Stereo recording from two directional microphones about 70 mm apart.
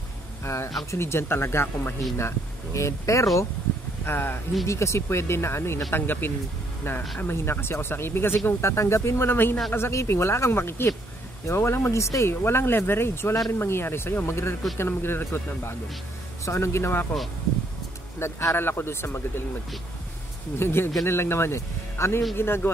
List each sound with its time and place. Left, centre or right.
0.4 s speech: left
4.0 s speech: left
16.4 s speech: left
18.2 s speech: left
18.6 s speech: left
20.5 s speech: left